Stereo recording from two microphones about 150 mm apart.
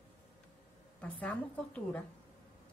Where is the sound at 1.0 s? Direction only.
10° left (ahead or behind).